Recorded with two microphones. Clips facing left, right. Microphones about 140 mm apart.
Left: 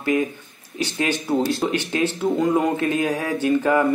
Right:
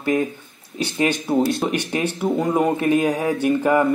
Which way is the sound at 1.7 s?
15° right (ahead or behind).